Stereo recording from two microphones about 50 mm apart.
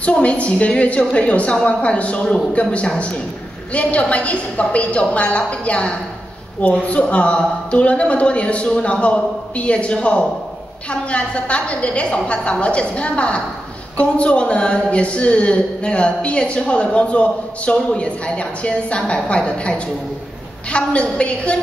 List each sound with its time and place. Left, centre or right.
0.0 s speech: left